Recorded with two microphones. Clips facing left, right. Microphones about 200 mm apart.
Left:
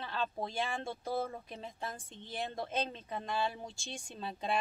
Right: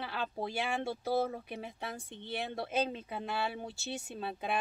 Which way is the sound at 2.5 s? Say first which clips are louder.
Right 5 dB; 10° right (ahead or behind).